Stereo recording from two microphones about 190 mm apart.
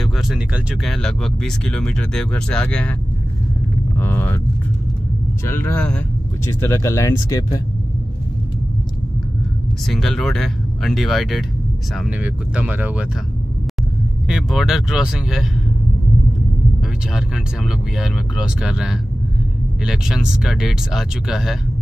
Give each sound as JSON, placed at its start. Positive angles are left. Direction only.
{"t": 0.0, "sound": "speech", "side_deg": 0}
{"t": 4.0, "sound": "speech", "side_deg": 10}
{"t": 5.4, "sound": "speech", "side_deg": 10}
{"t": 9.8, "sound": "speech", "side_deg": 0}
{"t": 14.2, "sound": "speech", "side_deg": -5}
{"t": 17.6, "sound": "speech", "side_deg": -5}